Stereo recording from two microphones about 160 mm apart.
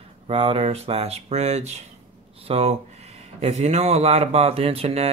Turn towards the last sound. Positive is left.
turn(degrees=-40)  # may be behind; listen again after turning